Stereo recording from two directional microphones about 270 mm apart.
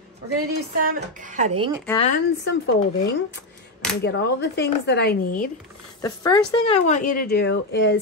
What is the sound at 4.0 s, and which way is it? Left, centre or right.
Speech, left.